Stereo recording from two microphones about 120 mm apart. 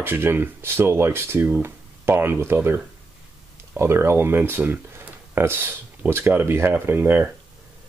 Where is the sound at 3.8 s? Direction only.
20° right (ahead or behind).